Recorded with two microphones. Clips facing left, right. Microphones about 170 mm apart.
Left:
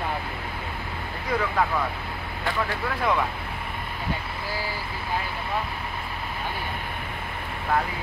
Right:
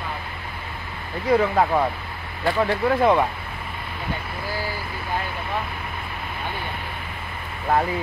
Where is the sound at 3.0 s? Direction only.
25° right (ahead or behind).